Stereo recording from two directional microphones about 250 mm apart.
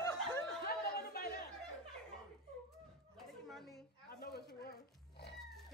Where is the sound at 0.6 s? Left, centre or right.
Left.